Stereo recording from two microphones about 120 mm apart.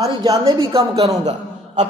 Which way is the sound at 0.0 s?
30° right (ahead or behind).